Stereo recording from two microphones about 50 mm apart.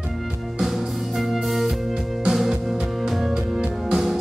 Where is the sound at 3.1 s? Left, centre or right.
Centre.